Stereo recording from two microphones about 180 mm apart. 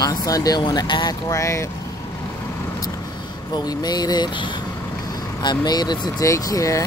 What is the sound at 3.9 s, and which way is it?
Speech, 20° left (ahead or behind).